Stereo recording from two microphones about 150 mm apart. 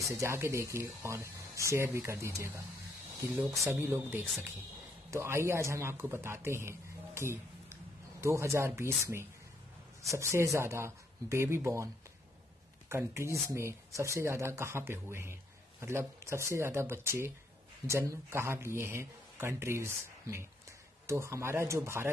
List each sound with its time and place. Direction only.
0.1 s a man's voice: 20° right (ahead or behind)
12.9 s speech: 15° right (ahead or behind)